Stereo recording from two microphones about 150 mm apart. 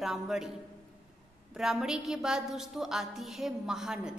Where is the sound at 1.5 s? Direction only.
5° right (ahead or behind).